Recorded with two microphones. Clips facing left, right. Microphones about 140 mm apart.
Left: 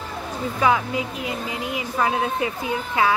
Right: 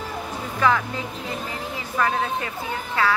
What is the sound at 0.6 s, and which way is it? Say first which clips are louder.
A woman's voice: left 1 dB; 15° left (ahead or behind).